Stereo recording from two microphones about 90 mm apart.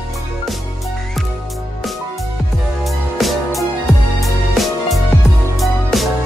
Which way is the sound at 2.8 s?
Centre (ahead or behind).